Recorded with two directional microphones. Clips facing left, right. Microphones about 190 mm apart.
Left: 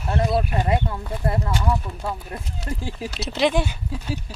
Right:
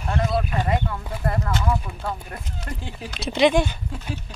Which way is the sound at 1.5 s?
10° left (ahead or behind).